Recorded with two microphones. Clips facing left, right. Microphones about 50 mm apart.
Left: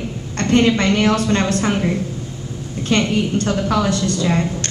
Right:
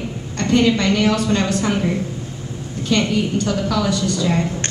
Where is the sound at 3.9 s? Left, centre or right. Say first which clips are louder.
Left 1 dB; left.